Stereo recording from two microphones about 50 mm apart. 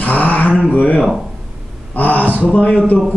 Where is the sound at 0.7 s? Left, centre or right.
Left.